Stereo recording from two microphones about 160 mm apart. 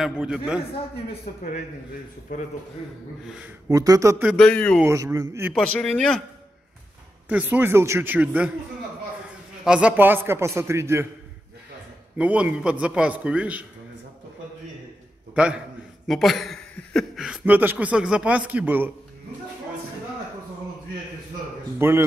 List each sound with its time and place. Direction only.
0.0 s a man's voice: 5° right (ahead or behind)
3.6 s speech: 20° right (ahead or behind)
4.3 s a man's voice: 5° left (ahead or behind)
4.8 s speech: 20° right (ahead or behind)
5.5 s a man's voice: 5° left (ahead or behind)
7.2 s a man's voice: 10° right (ahead or behind)
9.7 s a man's voice: 5° right (ahead or behind)
12.2 s a man's voice: 10° right (ahead or behind)
15.3 s a man's voice: 5° right (ahead or behind)
21.7 s a man's voice: 15° right (ahead or behind)